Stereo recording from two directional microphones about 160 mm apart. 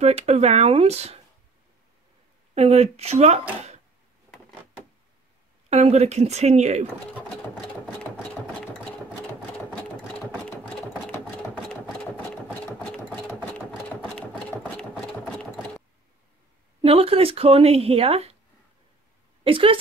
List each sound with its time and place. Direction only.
0.0 s a woman's voice: 40° right (ahead or behind)
2.5 s a woman's voice: 40° right (ahead or behind)
5.7 s speech: 40° right (ahead or behind)
9.7 s sewing machine: 5° left (ahead or behind)
13.3 s sewing machine: 10° left (ahead or behind)
16.8 s a woman's voice: 35° right (ahead or behind)
19.4 s a woman's voice: 35° right (ahead or behind)